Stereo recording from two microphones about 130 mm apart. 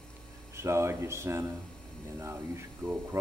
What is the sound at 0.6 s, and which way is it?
A man's voice, 20° right (ahead or behind).